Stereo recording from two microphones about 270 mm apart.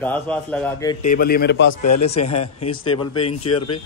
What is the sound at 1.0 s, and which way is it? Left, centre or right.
Speech, left.